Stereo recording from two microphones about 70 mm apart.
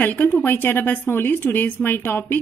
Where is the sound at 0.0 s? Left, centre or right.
Left.